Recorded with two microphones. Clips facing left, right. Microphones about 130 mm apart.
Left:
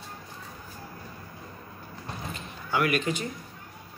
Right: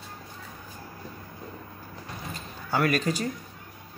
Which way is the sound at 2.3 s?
35° right (ahead or behind).